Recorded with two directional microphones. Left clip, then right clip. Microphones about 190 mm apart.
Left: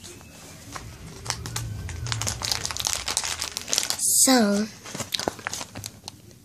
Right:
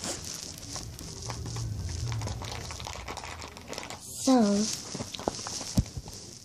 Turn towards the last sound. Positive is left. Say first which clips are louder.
# left 3 dB
turn(degrees=30)  # may be behind; listen again after turning